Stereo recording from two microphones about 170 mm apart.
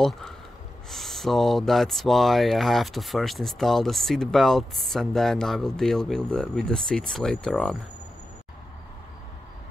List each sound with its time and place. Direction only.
0.8 s speech: centre (ahead or behind)